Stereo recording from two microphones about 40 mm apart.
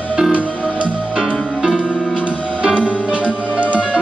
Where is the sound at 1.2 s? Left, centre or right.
Centre.